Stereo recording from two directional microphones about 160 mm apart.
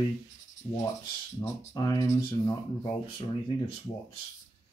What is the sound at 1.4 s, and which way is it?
Speech, 25° left (ahead or behind).